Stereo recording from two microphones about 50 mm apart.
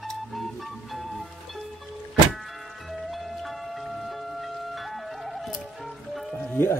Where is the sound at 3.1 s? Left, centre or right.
Centre.